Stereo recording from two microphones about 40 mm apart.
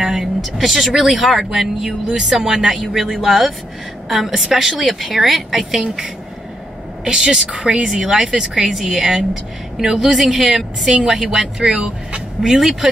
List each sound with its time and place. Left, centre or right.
0.0 s speech: centre
7.1 s speech: centre
8.6 s speech: centre
11.7 s speech: right
12.4 s speech: centre